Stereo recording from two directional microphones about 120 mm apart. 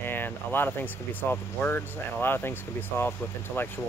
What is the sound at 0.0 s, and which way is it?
Speech, 15° left (ahead or behind).